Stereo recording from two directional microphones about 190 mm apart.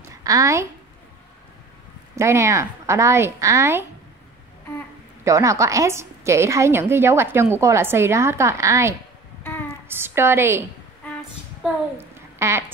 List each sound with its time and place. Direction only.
0.1 s a woman's voice: 20° right (ahead or behind)
2.1 s a woman's voice: 15° right (ahead or behind)
5.2 s a woman's voice: 15° right (ahead or behind)
9.4 s music: 10° left (ahead or behind)
9.8 s a woman's voice: 10° right (ahead or behind)
11.6 s a child's voice: 10° right (ahead or behind)